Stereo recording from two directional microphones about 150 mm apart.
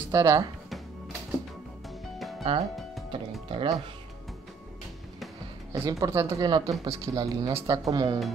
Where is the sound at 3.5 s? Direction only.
30° right (ahead or behind).